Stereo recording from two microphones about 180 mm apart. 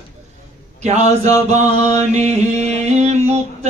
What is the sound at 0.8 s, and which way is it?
Chant, 40° right (ahead or behind).